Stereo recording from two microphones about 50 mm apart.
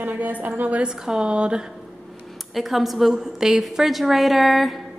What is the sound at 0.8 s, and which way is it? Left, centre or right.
Speech, centre.